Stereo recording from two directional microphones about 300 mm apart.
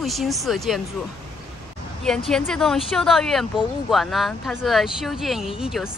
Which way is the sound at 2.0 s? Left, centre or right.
Centre.